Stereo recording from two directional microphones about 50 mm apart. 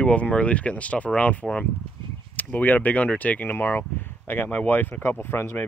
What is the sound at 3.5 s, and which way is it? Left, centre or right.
Speech, left.